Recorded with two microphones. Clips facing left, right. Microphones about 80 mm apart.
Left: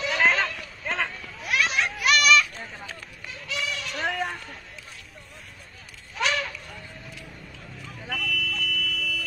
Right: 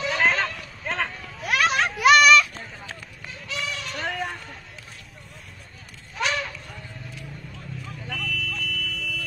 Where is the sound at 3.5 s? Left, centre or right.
Right.